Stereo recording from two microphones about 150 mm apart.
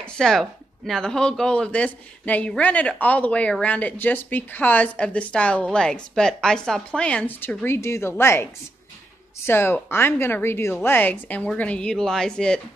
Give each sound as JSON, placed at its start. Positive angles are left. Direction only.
{"t": 0.0, "sound": "speech", "side_deg": 5}
{"t": 9.5, "sound": "speech", "side_deg": 15}